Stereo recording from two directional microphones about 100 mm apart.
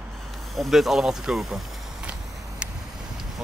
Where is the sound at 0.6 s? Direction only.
5° right (ahead or behind).